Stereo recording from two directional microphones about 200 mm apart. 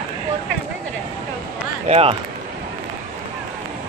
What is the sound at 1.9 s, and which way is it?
Speech, 30° right (ahead or behind).